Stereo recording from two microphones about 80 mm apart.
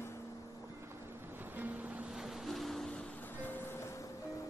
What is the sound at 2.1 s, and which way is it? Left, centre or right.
Boat, centre.